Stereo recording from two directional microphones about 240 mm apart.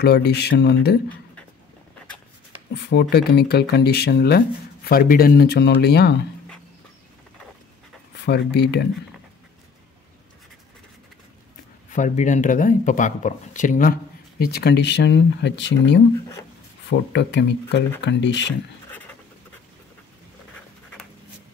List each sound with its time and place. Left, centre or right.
0.0 s speech: left
2.7 s speech: left
8.2 s speech: left
11.9 s speech: left
17.1 s speech: left
18.9 s writing: centre